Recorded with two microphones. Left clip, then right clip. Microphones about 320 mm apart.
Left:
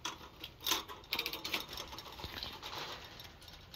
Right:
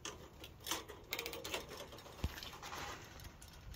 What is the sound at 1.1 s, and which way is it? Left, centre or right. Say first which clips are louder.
Mechanisms: left 6 dB; right.